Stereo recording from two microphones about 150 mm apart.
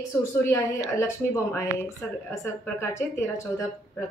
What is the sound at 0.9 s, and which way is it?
A woman's voice, 20° left (ahead or behind).